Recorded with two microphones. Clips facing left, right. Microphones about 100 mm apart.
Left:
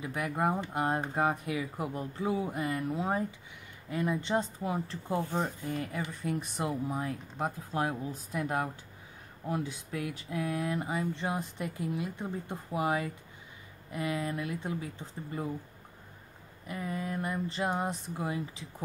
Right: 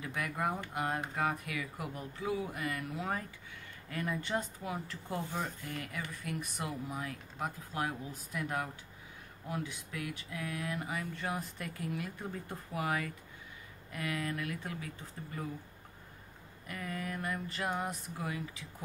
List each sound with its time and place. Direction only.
0.0 s speech: 20° left (ahead or behind)
16.6 s speech: 25° left (ahead or behind)